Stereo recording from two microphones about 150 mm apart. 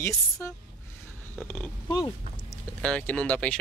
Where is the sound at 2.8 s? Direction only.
10° left (ahead or behind).